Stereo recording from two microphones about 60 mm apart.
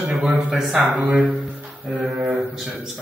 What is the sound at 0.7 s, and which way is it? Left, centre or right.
Speech, centre.